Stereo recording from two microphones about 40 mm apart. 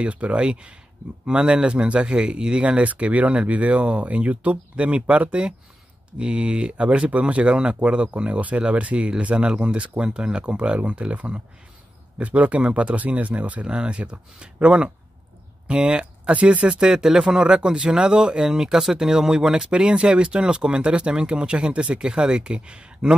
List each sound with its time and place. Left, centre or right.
0.0 s speech: right
13.7 s speech: right
16.3 s speech: right
16.6 s speech: right